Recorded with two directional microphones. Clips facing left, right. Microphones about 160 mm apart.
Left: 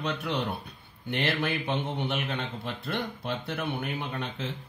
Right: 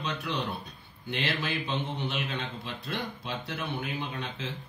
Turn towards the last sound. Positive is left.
turn(degrees=55)  # may be behind; listen again after turning